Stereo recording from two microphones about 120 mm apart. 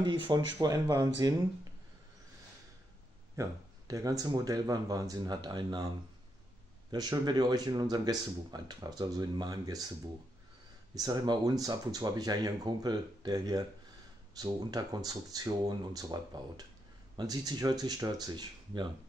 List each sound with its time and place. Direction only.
0.0 s speech: 40° right (ahead or behind)
3.3 s speech: 30° right (ahead or behind)
6.9 s speech: 35° right (ahead or behind)
11.0 s speech: 30° right (ahead or behind)